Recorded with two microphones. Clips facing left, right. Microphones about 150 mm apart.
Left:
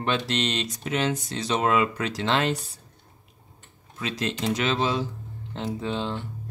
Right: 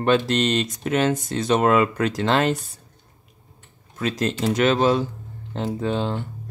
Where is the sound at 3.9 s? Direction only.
45° right (ahead or behind).